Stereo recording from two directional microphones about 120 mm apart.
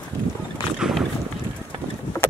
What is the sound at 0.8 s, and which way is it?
Boat, centre (ahead or behind).